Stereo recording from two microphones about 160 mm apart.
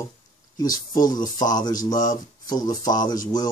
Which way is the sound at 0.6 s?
25° left (ahead or behind).